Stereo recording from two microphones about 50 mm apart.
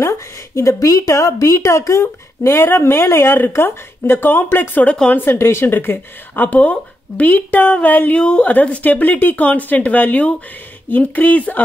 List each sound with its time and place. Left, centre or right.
0.6 s speech: left
2.7 s speech: left
8.2 s a woman's voice: centre